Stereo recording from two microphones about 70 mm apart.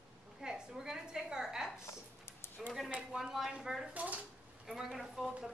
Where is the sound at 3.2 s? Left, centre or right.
Centre.